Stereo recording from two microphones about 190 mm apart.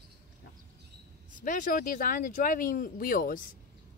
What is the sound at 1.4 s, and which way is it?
Speech, 45° left (ahead or behind).